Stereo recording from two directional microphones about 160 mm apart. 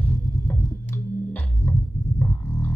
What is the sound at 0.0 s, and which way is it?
Music, 15° left (ahead or behind).